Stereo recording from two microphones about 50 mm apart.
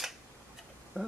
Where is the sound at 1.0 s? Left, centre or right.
Right.